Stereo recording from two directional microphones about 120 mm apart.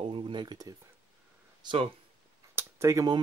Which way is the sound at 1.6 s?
50° right (ahead or behind).